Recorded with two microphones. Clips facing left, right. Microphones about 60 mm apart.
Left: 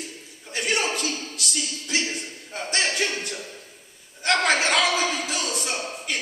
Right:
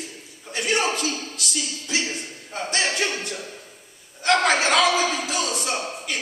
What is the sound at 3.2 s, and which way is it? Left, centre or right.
A man's voice, right.